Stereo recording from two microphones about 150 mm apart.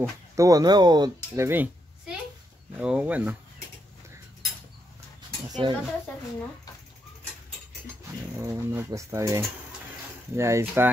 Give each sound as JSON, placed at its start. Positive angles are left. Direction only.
{"t": 0.4, "sound": "a child's voice", "side_deg": -25}
{"t": 5.6, "sound": "speech", "side_deg": -35}
{"t": 8.4, "sound": "speech", "side_deg": -15}